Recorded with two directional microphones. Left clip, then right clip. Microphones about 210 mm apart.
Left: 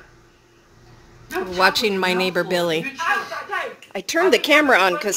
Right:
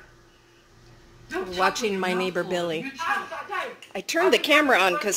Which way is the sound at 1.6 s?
10° left (ahead or behind).